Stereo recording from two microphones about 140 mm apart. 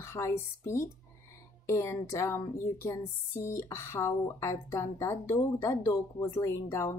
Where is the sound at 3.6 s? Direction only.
20° left (ahead or behind).